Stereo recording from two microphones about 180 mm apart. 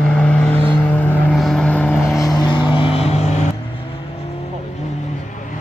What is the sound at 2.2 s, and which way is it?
Vehicle, 20° left (ahead or behind).